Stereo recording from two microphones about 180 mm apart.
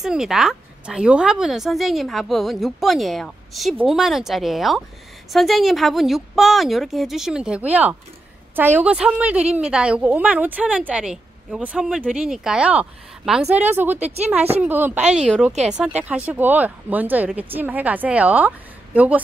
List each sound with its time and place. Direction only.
0.0 s a woman's voice: 5° right (ahead or behind)
13.9 s speech: 35° right (ahead or behind)
14.6 s a woman's voice: 10° right (ahead or behind)
15.5 s speech: 40° right (ahead or behind)
16.3 s a woman's voice: 10° right (ahead or behind)